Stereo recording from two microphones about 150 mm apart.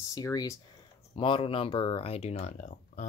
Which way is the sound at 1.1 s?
35° left (ahead or behind).